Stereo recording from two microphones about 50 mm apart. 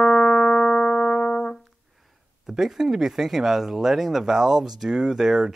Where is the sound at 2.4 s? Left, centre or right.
Centre.